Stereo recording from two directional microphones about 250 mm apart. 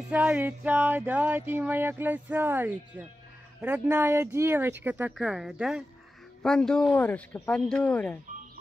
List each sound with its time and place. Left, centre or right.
0.1 s speech: centre